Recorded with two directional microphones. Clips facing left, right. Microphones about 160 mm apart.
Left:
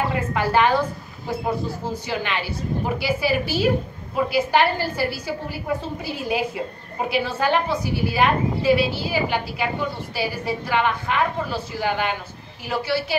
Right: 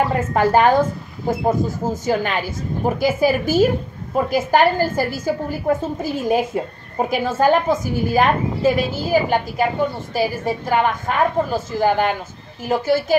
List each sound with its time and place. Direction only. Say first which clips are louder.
0.1 s a woman's voice: right 5 dB; 40° right (ahead or behind)